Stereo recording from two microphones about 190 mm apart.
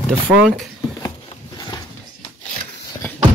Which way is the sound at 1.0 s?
20° left (ahead or behind).